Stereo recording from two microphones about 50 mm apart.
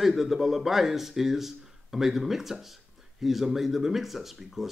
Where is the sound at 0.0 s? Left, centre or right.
Centre.